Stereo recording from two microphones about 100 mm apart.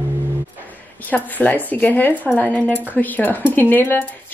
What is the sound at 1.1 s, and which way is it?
Speech, 15° left (ahead or behind).